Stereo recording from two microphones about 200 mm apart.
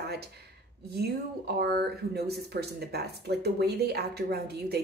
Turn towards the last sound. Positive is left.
turn(degrees=-55)  # may be behind; listen again after turning